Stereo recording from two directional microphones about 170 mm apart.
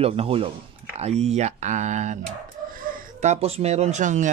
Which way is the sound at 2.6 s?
55° right (ahead or behind).